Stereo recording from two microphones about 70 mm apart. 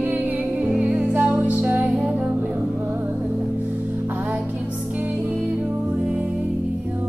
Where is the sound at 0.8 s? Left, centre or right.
Right.